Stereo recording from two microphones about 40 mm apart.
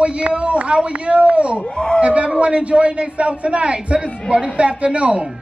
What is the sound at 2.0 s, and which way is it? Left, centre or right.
A man's voice, right.